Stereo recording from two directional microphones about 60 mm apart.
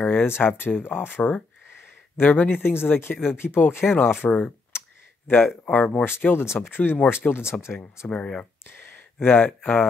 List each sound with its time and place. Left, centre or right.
0.0 s speech: left
4.7 s clicking: left
5.7 s speech: left
6.0 s speech: left
8.1 s speech: centre
8.6 s speech: left